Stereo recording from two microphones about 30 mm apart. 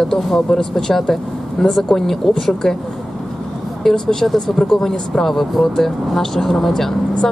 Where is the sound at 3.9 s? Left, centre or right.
Centre.